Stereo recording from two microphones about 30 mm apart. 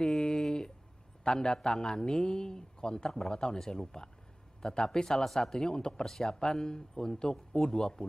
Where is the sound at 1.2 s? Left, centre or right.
Left.